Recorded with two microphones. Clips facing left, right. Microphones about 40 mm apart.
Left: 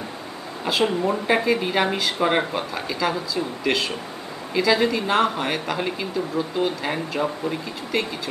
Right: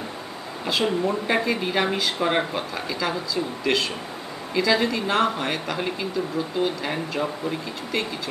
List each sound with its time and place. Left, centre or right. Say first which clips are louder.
0.7 s speech: left 2 dB; centre